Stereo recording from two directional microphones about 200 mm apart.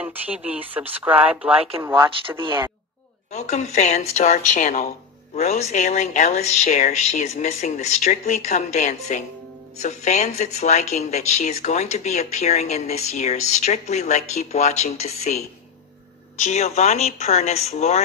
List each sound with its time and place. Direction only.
0.0 s speech: 5° right (ahead or behind)
3.3 s speech: 35° left (ahead or behind)